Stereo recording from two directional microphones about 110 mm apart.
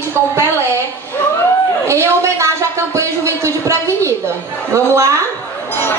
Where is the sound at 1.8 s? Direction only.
25° right (ahead or behind).